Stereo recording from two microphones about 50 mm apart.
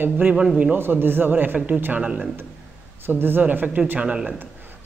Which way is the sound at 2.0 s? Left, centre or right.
Right.